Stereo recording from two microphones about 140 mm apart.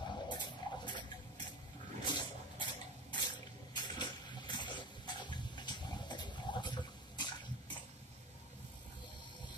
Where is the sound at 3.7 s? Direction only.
35° left (ahead or behind).